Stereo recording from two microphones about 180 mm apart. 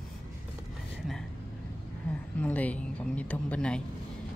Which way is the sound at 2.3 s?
10° left (ahead or behind).